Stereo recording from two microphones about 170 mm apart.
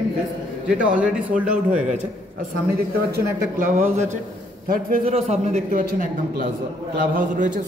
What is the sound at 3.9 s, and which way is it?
Speech, 40° right (ahead or behind).